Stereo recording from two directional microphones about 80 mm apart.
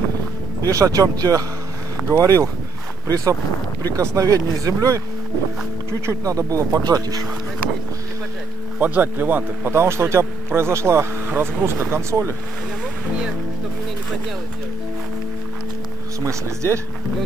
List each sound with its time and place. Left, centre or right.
0.7 s speech: right
3.9 s speech: right
8.7 s speech: right